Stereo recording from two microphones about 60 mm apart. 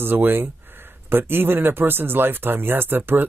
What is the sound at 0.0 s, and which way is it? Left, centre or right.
Speech, right.